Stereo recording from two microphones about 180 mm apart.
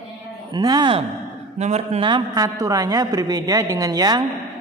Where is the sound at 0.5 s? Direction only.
20° right (ahead or behind).